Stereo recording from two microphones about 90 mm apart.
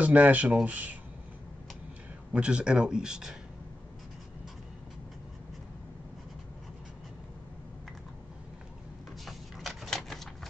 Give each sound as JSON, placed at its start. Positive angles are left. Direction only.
{"t": 0.0, "sound": "speech", "side_deg": -15}
{"t": 2.3, "sound": "speech", "side_deg": -10}
{"t": 9.2, "sound": "a sound", "side_deg": 0}